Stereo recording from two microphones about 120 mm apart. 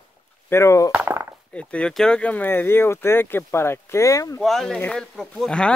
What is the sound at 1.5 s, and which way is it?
Speech, 10° left (ahead or behind).